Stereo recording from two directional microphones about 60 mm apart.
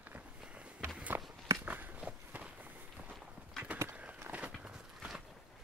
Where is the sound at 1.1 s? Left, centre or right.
Right.